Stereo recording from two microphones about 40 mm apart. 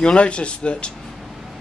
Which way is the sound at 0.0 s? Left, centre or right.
Left.